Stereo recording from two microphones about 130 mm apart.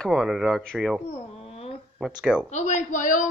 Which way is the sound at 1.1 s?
50° left (ahead or behind).